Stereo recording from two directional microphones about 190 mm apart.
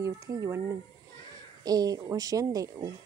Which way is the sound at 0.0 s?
15° right (ahead or behind).